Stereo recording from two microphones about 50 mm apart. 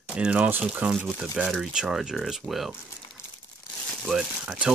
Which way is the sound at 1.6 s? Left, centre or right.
Centre.